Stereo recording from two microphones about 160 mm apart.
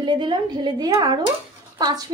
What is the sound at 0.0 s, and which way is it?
Speech, 30° right (ahead or behind).